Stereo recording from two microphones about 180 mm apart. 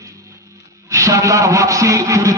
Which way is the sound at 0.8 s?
15° right (ahead or behind).